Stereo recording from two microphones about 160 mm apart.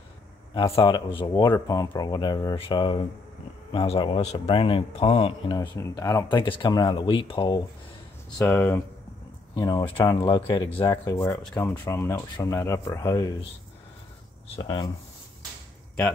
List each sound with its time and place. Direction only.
0.7 s speech: 30° left (ahead or behind)
5.5 s speech: 25° left (ahead or behind)
8.4 s speech: 15° left (ahead or behind)
9.8 s speech: 15° left (ahead or behind)
10.2 s speech: 30° left (ahead or behind)
10.9 s speech: 20° left (ahead or behind)
14.6 s speech: 25° left (ahead or behind)